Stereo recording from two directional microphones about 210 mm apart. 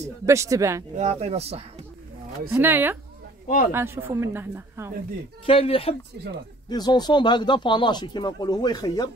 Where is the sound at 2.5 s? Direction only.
10° right (ahead or behind).